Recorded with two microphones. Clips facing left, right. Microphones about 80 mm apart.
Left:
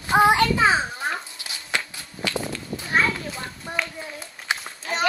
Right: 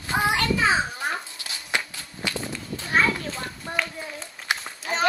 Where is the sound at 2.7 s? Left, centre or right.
Centre.